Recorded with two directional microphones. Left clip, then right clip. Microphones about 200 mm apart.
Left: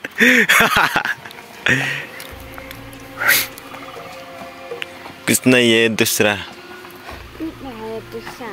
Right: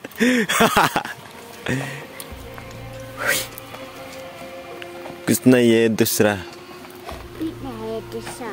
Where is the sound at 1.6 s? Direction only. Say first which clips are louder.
Left 10 dB; 5° right (ahead or behind).